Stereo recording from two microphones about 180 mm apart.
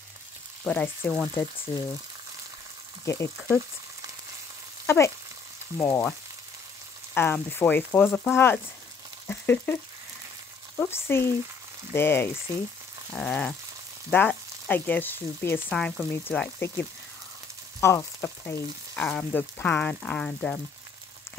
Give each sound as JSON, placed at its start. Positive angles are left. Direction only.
{"t": 0.7, "sound": "speech", "side_deg": 5}
{"t": 3.1, "sound": "speech", "side_deg": 15}
{"t": 4.8, "sound": "frying", "side_deg": 15}
{"t": 5.8, "sound": "speech", "side_deg": 10}
{"t": 7.2, "sound": "speech", "side_deg": 10}
{"t": 9.3, "sound": "a sound", "side_deg": 10}
{"t": 10.8, "sound": "speech", "side_deg": 15}